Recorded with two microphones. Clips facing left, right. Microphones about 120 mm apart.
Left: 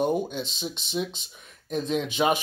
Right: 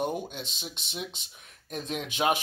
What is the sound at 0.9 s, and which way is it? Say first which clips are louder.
Speech: left 9 dB; 10° right (ahead or behind).